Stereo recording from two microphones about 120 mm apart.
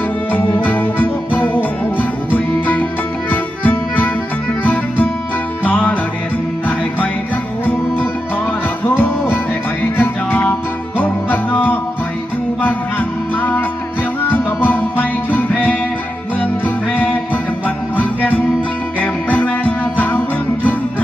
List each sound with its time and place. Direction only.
0.3 s music: 15° left (ahead or behind)
8.8 s music: 15° left (ahead or behind)
13.4 s music: 15° left (ahead or behind)